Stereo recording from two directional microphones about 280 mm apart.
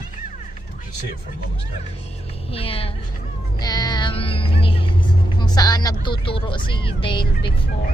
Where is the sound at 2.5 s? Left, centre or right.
Centre.